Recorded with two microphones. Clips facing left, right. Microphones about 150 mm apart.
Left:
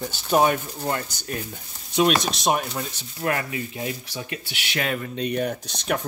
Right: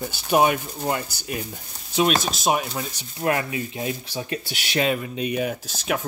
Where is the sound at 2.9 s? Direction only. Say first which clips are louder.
Right 4 dB; 20° right (ahead or behind); by 4.8 s 35° right (ahead or behind).